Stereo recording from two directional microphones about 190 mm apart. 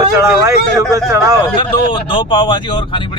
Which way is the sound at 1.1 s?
15° right (ahead or behind).